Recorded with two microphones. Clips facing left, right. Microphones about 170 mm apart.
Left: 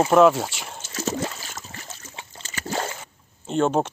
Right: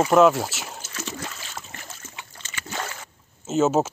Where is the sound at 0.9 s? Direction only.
40° left (ahead or behind).